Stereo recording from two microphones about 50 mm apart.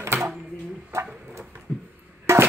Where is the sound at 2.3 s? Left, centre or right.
Right.